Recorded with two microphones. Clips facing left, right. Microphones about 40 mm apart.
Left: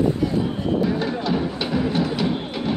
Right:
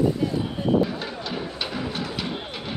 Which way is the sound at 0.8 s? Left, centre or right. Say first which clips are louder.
Left 5 dB; centre.